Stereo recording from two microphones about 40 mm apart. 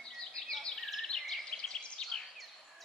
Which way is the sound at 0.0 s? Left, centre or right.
Centre.